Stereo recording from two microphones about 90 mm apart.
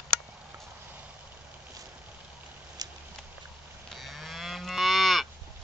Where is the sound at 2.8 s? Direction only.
45° right (ahead or behind).